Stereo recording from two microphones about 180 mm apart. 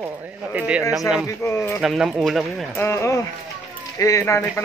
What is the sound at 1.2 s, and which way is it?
Speech, 15° left (ahead or behind).